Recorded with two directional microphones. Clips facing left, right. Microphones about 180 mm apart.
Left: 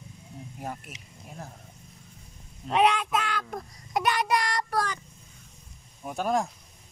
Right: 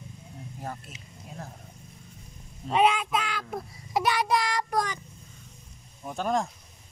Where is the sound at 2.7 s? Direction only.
Centre (ahead or behind).